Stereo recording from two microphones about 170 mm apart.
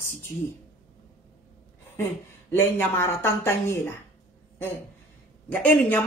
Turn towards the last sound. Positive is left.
turn(degrees=10)  # may be behind; listen again after turning